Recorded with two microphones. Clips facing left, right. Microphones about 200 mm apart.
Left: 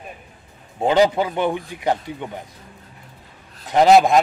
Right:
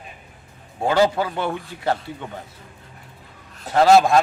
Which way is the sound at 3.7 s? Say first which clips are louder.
Left 1 dB; 20° left (ahead or behind).